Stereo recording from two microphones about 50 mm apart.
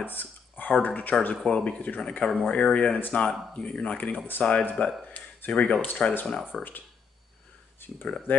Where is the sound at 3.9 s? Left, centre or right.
Left.